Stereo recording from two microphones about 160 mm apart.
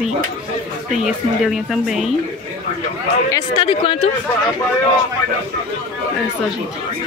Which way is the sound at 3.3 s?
25° left (ahead or behind).